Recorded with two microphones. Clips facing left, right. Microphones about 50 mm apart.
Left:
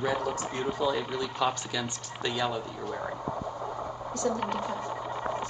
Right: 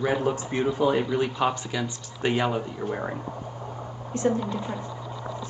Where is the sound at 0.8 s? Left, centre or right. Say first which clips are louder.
Right 6 dB; right.